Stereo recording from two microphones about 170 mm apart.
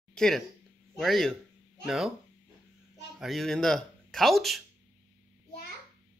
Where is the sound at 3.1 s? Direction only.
Centre (ahead or behind).